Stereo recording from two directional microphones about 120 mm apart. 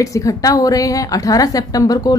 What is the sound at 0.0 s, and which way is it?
A woman's voice, 25° left (ahead or behind).